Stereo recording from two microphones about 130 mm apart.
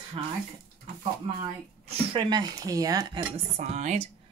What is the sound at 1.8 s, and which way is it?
Speech, 35° right (ahead or behind).